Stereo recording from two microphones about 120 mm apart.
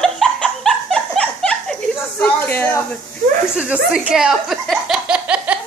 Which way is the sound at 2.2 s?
15° left (ahead or behind).